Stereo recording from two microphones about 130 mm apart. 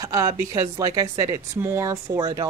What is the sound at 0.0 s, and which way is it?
A woman's voice, 25° right (ahead or behind).